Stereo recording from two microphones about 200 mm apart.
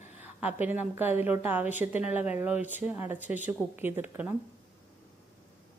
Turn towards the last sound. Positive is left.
turn(degrees=-10)  # may be behind; listen again after turning